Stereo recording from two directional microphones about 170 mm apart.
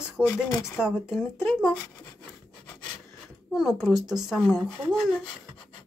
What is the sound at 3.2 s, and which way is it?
Speech, 5° right (ahead or behind).